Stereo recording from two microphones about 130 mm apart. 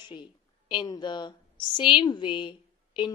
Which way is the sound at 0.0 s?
35° left (ahead or behind).